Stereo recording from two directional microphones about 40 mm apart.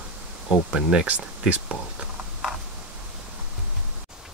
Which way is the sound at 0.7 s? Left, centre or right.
Centre.